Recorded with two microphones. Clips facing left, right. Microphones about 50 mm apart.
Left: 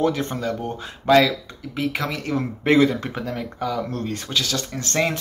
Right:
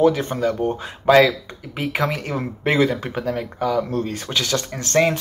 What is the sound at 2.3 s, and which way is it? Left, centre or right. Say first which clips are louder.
Speech: left 4 dB; centre.